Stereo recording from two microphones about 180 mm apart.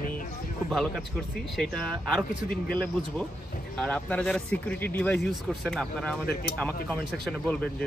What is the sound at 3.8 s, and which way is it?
Speech, 5° left (ahead or behind).